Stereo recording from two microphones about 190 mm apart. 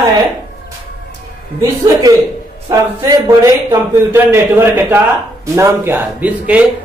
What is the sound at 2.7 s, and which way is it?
A man's voice, 15° right (ahead or behind).